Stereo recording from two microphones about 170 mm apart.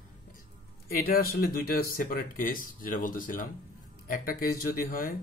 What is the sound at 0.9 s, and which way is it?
Speech, 65° left (ahead or behind).